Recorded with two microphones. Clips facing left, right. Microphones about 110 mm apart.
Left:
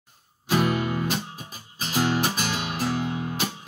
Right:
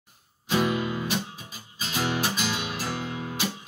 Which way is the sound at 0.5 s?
55° left (ahead or behind).